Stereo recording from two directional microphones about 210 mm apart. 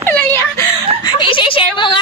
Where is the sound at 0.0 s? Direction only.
10° left (ahead or behind).